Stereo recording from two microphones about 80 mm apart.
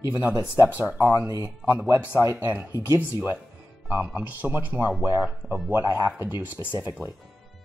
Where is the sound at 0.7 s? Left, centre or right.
Centre.